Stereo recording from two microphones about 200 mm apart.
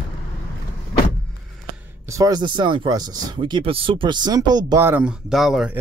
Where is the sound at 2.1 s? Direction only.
20° right (ahead or behind); by 5.7 s centre (ahead or behind).